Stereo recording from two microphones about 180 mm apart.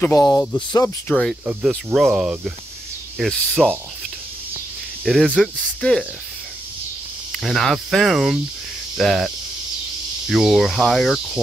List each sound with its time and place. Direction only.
0.0 s speech: 20° left (ahead or behind)
1.0 s speech: 5° left (ahead or behind)
5.0 s speech: centre (ahead or behind)
7.3 s speech: centre (ahead or behind)
10.3 s speech: centre (ahead or behind)